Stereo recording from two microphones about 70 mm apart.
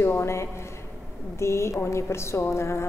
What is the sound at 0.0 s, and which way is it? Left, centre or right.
Speech, left.